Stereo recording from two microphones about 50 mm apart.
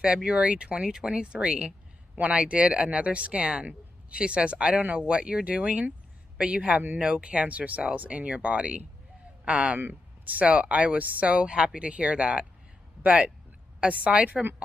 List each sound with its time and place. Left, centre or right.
0.0 s speech: centre